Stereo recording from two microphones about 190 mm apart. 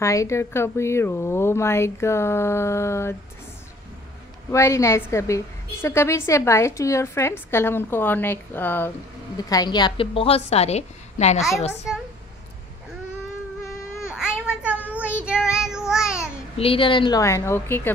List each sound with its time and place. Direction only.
0.0 s a woman's voice: 15° left (ahead or behind)
4.5 s a woman's voice: 15° left (ahead or behind); by 11.4 s 35° left (ahead or behind)
14.0 s baby cry: 5° right (ahead or behind)
15.2 s child singing: 5° right (ahead or behind)
16.5 s a woman's voice: 30° left (ahead or behind); by 17.9 s 10° left (ahead or behind)